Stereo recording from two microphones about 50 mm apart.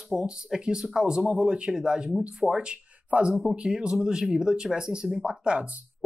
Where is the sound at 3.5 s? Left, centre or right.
Centre.